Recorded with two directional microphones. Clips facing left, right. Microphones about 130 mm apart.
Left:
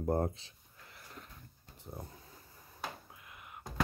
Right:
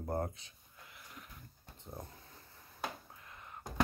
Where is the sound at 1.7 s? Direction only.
10° left (ahead or behind).